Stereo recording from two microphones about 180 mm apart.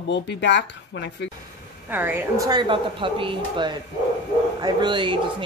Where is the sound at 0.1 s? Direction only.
75° left (ahead or behind).